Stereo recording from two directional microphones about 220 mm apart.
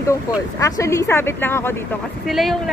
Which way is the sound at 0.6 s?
15° left (ahead or behind).